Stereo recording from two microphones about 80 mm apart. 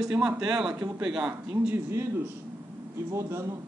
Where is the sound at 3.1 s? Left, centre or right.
Right.